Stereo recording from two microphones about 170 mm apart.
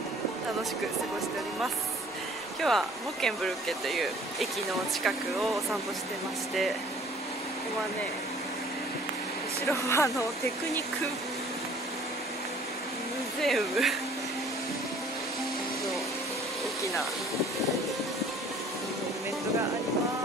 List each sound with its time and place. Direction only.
2.6 s speech: centre (ahead or behind)
9.7 s speech: 15° left (ahead or behind)
13.4 s speech: centre (ahead or behind)